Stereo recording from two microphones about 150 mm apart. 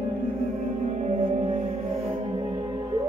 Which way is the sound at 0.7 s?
50° right (ahead or behind).